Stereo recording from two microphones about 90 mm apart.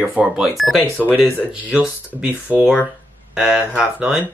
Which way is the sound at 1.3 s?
20° left (ahead or behind).